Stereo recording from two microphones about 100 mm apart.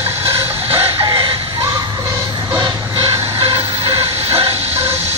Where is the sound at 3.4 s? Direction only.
60° right (ahead or behind).